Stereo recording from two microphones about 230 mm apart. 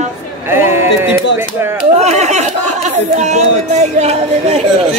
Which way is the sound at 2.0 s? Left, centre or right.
Right.